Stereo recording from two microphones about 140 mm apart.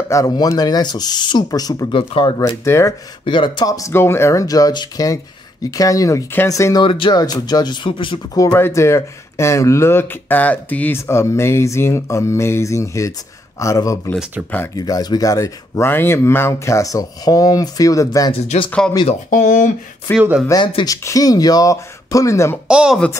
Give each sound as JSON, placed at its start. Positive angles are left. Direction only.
{"t": 0.1, "sound": "speech", "side_deg": 25}
{"t": 2.0, "sound": "speech", "side_deg": 40}
{"t": 2.3, "sound": "speech", "side_deg": 25}
{"t": 3.3, "sound": "speech", "side_deg": 35}
{"t": 8.4, "sound": "speech", "side_deg": 20}
{"t": 19.0, "sound": "speech", "side_deg": 65}
{"t": 20.2, "sound": "speech", "side_deg": -5}
{"t": 20.4, "sound": "speech", "side_deg": 35}
{"t": 22.7, "sound": "speech", "side_deg": -5}